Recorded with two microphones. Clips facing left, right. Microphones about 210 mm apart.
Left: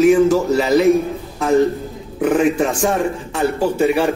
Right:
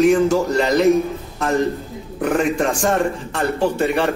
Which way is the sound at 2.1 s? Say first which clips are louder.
Left 3 dB; 5° left (ahead or behind).